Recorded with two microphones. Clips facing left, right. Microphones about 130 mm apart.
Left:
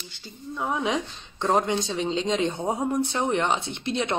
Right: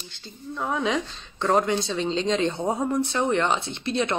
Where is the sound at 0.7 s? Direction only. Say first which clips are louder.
Right 1 dB; 15° left (ahead or behind).